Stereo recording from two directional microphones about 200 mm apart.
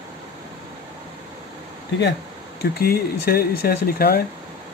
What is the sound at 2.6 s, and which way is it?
Speech, 50° left (ahead or behind).